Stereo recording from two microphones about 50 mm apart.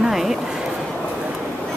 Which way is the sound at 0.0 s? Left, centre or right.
Centre.